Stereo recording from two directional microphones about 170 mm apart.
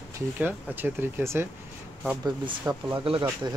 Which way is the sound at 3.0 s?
30° right (ahead or behind).